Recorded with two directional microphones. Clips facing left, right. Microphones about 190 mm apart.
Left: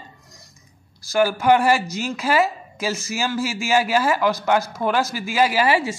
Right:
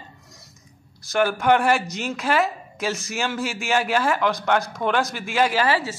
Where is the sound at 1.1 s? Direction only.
Centre (ahead or behind).